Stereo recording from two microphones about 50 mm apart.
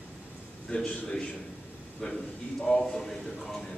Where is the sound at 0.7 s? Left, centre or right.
Centre.